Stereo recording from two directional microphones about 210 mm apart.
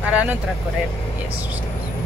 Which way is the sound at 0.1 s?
5° right (ahead or behind).